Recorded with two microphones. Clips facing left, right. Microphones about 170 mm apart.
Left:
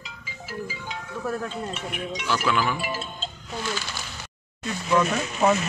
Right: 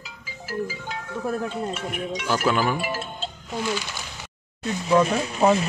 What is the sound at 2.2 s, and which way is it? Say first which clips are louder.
Speech: right 2 dB; 45° right (ahead or behind).